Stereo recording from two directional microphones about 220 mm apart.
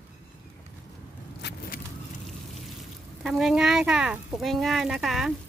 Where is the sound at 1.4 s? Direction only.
50° left (ahead or behind).